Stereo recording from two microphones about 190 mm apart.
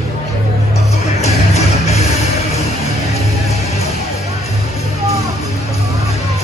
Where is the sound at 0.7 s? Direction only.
35° left (ahead or behind).